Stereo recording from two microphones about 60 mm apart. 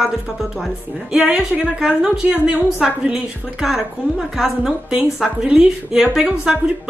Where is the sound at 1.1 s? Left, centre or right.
Centre.